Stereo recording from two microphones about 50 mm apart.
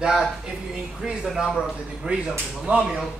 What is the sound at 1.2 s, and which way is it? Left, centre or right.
Speech, centre.